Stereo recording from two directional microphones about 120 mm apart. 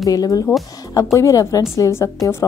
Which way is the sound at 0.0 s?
30° left (ahead or behind).